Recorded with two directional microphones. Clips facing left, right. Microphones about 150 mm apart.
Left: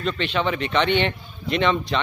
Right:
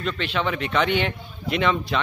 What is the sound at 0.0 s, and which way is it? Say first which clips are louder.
A man's voice: left 2 dB; centre (ahead or behind).